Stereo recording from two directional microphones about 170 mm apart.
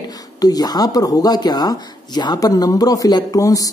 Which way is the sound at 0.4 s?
20° left (ahead or behind).